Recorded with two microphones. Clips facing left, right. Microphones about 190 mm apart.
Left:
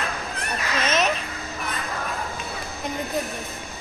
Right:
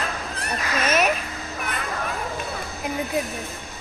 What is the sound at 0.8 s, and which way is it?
Speech, 10° right (ahead or behind).